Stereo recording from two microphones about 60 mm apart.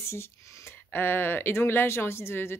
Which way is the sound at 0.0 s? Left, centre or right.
Left.